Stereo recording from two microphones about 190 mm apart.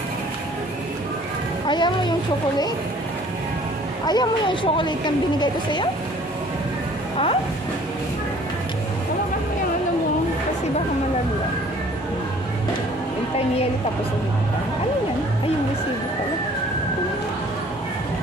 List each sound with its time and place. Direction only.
1.7 s a woman's voice: 25° left (ahead or behind)
4.0 s a woman's voice: 20° left (ahead or behind)